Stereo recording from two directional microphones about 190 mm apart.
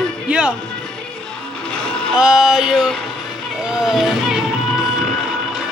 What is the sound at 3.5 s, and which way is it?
Music, 5° right (ahead or behind).